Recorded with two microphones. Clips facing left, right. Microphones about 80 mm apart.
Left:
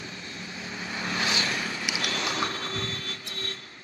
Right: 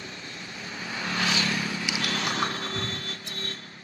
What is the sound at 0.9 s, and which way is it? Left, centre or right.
Vehicle, left.